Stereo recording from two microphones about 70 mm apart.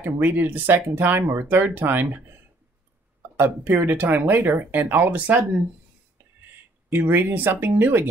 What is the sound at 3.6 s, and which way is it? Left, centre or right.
Speech, right.